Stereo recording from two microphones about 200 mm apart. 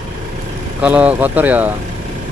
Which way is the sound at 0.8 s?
5° right (ahead or behind).